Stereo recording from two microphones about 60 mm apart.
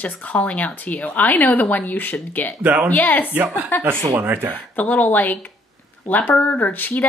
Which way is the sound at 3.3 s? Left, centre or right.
Right.